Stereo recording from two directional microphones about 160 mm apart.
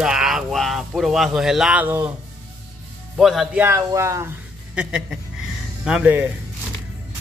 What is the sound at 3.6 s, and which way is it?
Speech, 15° right (ahead or behind).